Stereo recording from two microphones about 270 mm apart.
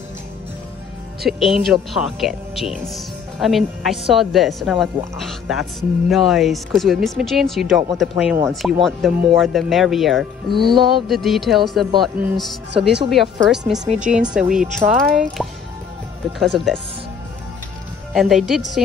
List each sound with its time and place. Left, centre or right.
1.2 s a woman's voice: centre
13.8 s speech: right
14.3 s a woman's voice: centre
18.1 s a woman's voice: centre